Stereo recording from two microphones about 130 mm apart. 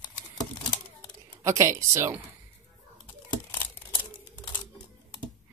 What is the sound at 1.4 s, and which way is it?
Speech, 25° right (ahead or behind).